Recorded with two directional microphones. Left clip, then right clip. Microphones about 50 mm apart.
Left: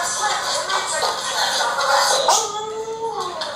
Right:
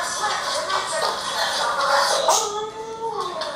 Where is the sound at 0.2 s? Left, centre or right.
Left.